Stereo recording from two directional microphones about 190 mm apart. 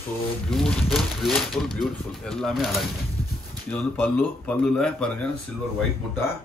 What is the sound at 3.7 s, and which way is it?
Speech, 10° left (ahead or behind).